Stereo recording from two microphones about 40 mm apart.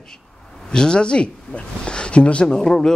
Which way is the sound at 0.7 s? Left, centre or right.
Left.